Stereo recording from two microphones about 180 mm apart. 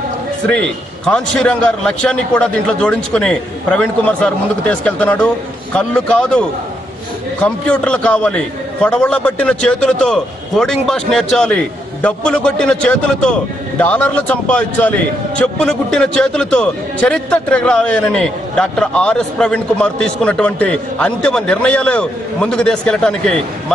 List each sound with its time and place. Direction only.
0.5 s a man's voice: 5° left (ahead or behind)
7.6 s a man's voice: 5° left (ahead or behind)